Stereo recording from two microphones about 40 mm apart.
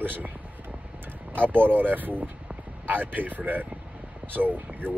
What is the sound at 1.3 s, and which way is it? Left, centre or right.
Speech, right.